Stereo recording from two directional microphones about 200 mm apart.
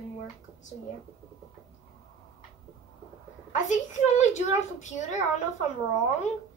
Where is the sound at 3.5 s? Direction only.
35° left (ahead or behind).